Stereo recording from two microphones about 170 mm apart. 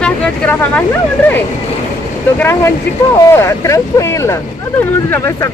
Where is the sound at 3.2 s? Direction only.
15° left (ahead or behind).